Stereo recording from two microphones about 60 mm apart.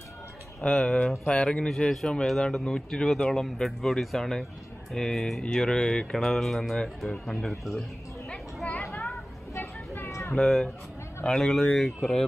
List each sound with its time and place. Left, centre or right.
0.6 s speech: centre
8.6 s vehicle: centre
10.0 s a sound: left
10.3 s speech: centre